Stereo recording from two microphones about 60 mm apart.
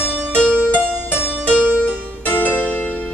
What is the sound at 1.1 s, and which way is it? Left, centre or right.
Music, centre.